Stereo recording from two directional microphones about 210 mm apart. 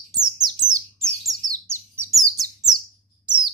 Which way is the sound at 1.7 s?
10° right (ahead or behind).